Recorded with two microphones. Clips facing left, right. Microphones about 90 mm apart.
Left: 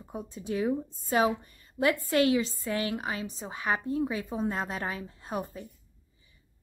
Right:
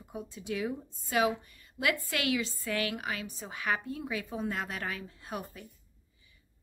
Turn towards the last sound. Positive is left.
turn(degrees=30)  # may be behind; listen again after turning